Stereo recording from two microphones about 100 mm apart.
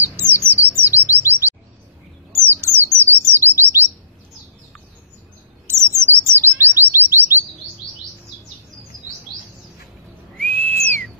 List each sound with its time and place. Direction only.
0.1 s chirp: 20° right (ahead or behind)
2.3 s bird: 25° right (ahead or behind)
5.7 s chirp: 25° right (ahead or behind)
10.4 s whistle: 15° left (ahead or behind)